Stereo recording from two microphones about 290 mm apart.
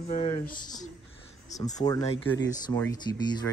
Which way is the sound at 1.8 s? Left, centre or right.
Centre.